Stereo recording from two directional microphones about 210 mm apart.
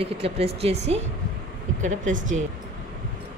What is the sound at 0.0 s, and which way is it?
A woman's voice, 30° right (ahead or behind).